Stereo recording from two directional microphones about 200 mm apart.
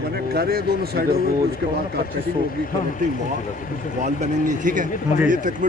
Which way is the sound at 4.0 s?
40° right (ahead or behind).